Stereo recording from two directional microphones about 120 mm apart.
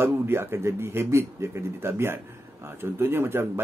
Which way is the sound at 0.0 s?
20° right (ahead or behind).